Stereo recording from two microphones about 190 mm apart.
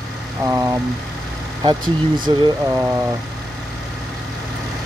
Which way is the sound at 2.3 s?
20° right (ahead or behind).